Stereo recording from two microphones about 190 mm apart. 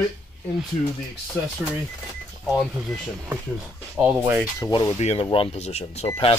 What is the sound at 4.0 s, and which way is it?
Speech, 10° right (ahead or behind).